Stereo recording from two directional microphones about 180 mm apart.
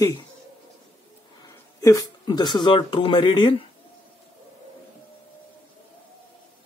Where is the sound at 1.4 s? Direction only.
20° left (ahead or behind).